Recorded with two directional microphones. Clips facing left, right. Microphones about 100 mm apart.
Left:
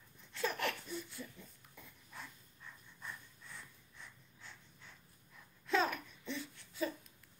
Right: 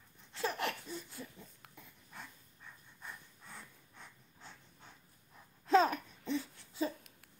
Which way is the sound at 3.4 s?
50° right (ahead or behind).